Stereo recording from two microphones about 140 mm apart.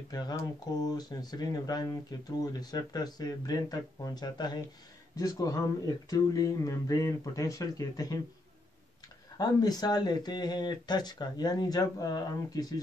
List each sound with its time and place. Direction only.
0.1 s speech: 30° left (ahead or behind)
9.4 s speech: 30° left (ahead or behind)